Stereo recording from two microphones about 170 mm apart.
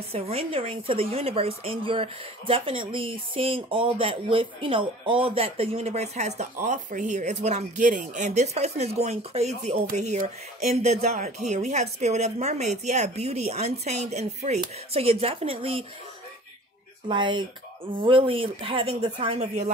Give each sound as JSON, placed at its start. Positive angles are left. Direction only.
{"t": 0.1, "sound": "a woman's voice", "side_deg": -35}
{"t": 17.1, "sound": "a woman's voice", "side_deg": -25}